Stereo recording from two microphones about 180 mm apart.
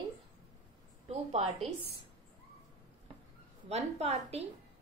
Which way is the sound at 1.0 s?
35° right (ahead or behind).